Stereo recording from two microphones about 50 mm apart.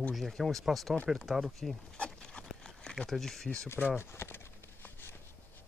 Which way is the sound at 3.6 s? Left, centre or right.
Left.